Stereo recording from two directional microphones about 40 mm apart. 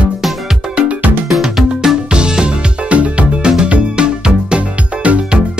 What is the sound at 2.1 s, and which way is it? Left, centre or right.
Music, right.